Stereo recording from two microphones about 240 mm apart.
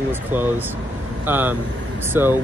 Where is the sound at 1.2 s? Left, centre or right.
Centre.